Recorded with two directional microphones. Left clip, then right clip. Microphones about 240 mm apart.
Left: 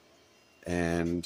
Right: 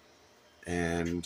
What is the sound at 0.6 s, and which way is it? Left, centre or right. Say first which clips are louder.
Speech: left 2 dB; centre.